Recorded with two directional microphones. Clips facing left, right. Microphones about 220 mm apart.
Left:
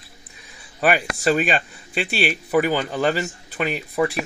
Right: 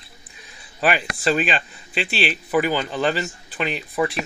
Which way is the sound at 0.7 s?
45° left (ahead or behind).